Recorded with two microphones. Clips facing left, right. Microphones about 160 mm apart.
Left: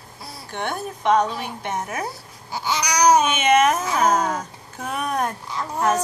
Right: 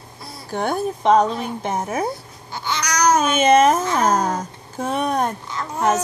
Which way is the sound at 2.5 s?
10° left (ahead or behind).